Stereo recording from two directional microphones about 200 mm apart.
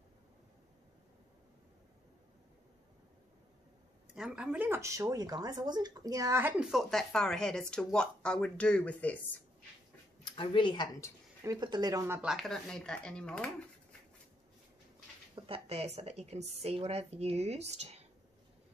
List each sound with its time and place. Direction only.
4.1 s speech: 5° right (ahead or behind)
10.2 s speech: 25° left (ahead or behind)
11.4 s speech: 20° right (ahead or behind); by 13.5 s 5° left (ahead or behind)
15.3 s a woman's voice: 25° right (ahead or behind)